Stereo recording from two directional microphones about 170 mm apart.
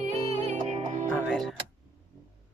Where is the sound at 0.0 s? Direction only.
45° right (ahead or behind).